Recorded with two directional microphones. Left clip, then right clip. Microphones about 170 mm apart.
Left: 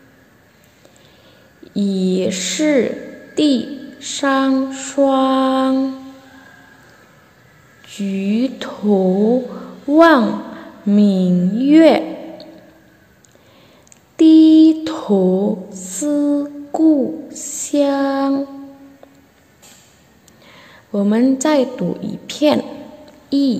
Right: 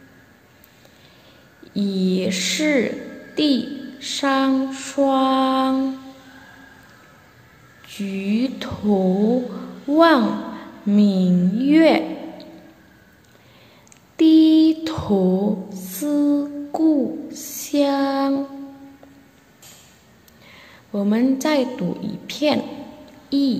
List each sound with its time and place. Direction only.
1.6 s a woman's voice: 15° left (ahead or behind)
7.8 s a woman's voice: 15° left (ahead or behind)
14.1 s a sound: 15° left (ahead or behind)
20.4 s a woman's voice: 20° left (ahead or behind)
23.3 s music: 20° left (ahead or behind)